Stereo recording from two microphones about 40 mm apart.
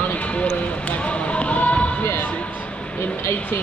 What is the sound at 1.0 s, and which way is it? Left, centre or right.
Speech, left.